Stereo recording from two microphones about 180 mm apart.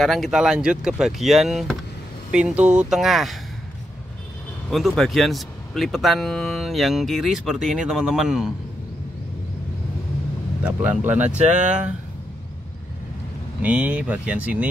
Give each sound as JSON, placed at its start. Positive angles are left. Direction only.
{"t": 0.0, "sound": "speech", "side_deg": 0}
{"t": 4.6, "sound": "speech", "side_deg": 0}
{"t": 10.6, "sound": "speech", "side_deg": -10}
{"t": 11.3, "sound": "speech", "side_deg": -40}
{"t": 13.6, "sound": "speech", "side_deg": -5}